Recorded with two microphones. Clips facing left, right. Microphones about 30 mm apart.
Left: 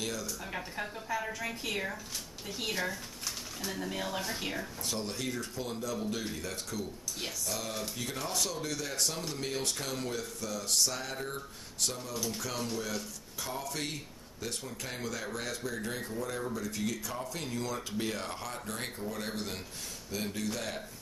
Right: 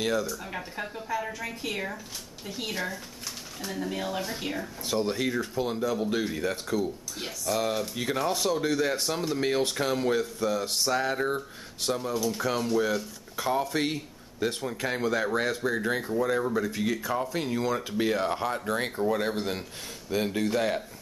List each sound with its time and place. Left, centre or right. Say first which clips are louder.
0.0 s speech: right 10 dB; right
0.3 s a woman's voice: right 3 dB; centre
4.9 s speech: right 10 dB; right
7.2 s speech: right 5 dB; centre
7.5 s speech: right 9 dB; right
8.5 s speech: right 9 dB; right
11.1 s speech: right 10 dB; right
11.8 s speech: right 8 dB; right